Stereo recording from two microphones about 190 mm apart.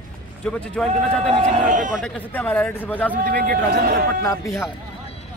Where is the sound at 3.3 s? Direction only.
50° right (ahead or behind).